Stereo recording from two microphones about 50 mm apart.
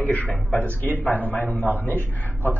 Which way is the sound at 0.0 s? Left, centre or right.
Left.